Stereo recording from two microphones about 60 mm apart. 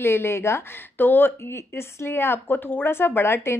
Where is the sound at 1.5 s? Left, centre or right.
Left.